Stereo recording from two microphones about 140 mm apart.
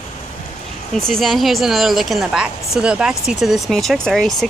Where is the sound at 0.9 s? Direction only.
5° left (ahead or behind).